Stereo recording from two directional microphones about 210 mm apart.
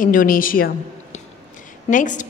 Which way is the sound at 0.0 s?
40° left (ahead or behind).